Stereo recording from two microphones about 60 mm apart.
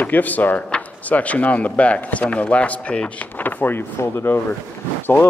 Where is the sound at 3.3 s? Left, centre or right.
Left.